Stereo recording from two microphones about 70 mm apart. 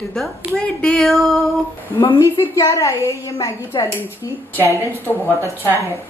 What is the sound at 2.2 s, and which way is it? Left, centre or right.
Speech, left.